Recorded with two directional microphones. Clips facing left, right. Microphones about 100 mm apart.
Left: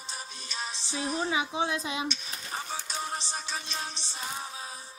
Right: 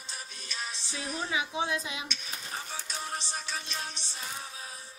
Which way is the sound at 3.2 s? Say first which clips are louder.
Left 1 dB; 25° left (ahead or behind).